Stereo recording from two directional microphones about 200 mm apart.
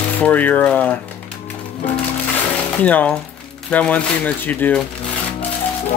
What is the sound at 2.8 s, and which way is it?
Speech, 5° left (ahead or behind).